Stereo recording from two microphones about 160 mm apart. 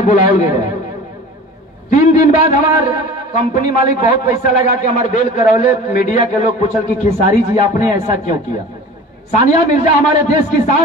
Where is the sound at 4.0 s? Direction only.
55° left (ahead or behind).